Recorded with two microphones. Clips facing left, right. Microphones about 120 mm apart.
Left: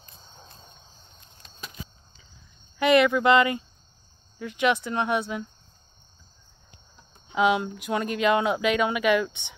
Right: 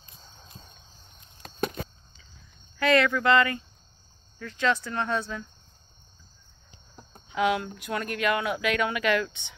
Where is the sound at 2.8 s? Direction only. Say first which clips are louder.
Left 3 dB; 15° left (ahead or behind).